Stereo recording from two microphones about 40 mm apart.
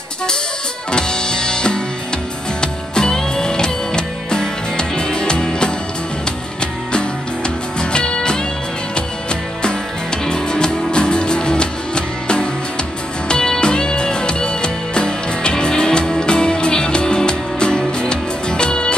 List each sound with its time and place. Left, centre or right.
0.9 s music: centre
6.9 s music: left